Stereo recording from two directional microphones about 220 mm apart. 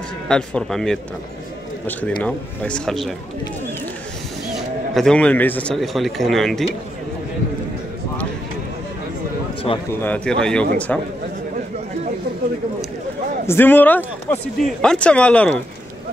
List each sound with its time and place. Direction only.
0.3 s speech: 5° left (ahead or behind)
4.6 s speech: centre (ahead or behind)
9.7 s a man's voice: 25° left (ahead or behind)
10.0 s speech: 5° left (ahead or behind)
13.5 s speech: 10° left (ahead or behind)